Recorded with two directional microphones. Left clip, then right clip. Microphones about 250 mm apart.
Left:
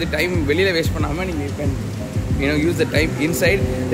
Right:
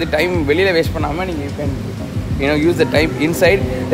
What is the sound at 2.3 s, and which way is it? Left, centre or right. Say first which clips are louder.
A man's voice: right 5 dB; centre.